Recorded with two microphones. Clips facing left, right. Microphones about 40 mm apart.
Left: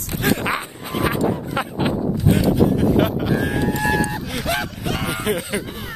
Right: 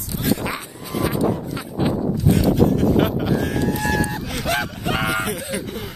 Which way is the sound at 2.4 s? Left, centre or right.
Centre.